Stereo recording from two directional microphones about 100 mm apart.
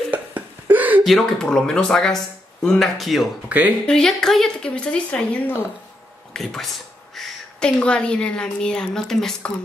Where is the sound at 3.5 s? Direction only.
15° right (ahead or behind).